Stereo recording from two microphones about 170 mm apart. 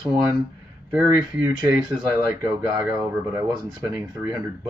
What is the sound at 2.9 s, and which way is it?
Speech, 15° right (ahead or behind).